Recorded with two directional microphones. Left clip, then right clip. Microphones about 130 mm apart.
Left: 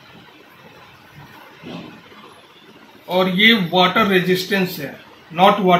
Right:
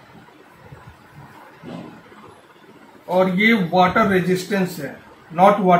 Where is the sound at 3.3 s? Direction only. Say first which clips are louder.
Left 2 dB; 20° right (ahead or behind).